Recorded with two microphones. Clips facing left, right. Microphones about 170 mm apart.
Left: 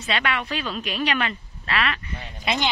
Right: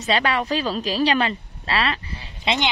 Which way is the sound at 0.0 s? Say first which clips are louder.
Right 5 dB; 35° right (ahead or behind).